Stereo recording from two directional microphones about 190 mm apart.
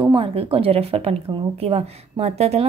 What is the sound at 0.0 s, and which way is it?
A woman's voice, 25° right (ahead or behind).